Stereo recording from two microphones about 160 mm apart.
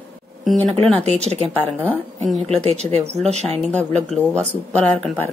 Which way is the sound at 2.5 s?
40° right (ahead or behind).